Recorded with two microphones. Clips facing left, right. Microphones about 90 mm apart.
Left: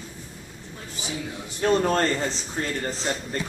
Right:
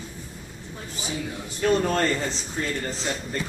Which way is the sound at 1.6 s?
35° left (ahead or behind).